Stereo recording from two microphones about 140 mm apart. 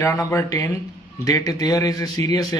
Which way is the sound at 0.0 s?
20° left (ahead or behind).